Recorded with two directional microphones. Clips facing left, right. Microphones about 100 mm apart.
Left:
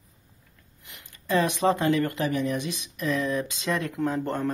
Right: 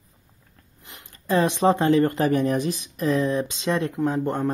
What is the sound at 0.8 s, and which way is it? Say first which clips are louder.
Speech: right 4 dB; 30° right (ahead or behind).